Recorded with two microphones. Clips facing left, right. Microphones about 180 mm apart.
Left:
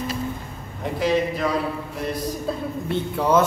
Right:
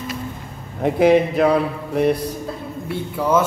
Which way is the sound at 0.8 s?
55° right (ahead or behind).